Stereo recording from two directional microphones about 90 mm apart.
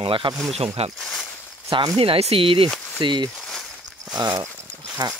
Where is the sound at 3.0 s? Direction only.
60° right (ahead or behind).